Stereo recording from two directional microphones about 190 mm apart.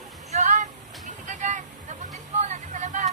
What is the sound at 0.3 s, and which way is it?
Vehicle, 40° right (ahead or behind).